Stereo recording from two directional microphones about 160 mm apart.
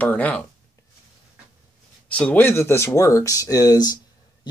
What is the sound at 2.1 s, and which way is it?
Speech, 10° left (ahead or behind).